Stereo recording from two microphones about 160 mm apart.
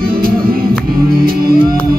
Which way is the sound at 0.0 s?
65° right (ahead or behind).